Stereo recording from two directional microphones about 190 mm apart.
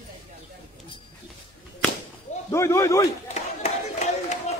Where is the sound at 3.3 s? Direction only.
40° left (ahead or behind).